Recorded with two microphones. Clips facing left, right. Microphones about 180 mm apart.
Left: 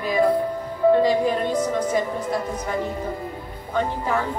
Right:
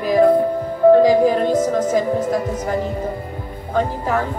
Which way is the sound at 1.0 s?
45° right (ahead or behind).